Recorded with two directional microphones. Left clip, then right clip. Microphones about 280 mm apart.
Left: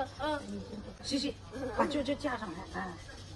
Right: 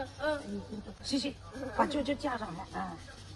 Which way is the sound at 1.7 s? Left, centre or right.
Centre.